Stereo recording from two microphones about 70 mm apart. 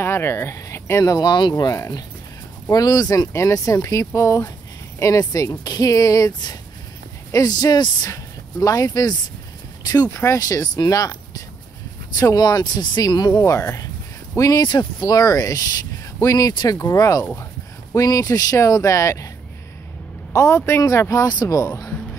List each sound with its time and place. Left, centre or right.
0.0 s speech: left
1.0 s speech: left
2.7 s speech: left
3.3 s speech: left
5.2 s speech: left
7.3 s speech: left
8.1 s speech: left
10.1 s speech: left
12.2 s speech: left
13.5 s speech: left
14.6 s speech: left
20.3 s speech: left
21.6 s speech: left